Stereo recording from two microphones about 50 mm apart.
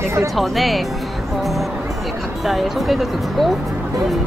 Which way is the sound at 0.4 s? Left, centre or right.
Centre.